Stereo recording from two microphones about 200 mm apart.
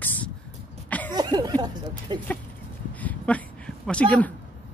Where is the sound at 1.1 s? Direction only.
20° right (ahead or behind).